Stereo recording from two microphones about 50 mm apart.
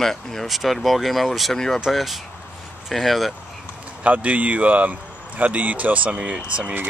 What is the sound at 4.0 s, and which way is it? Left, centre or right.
Speech, right.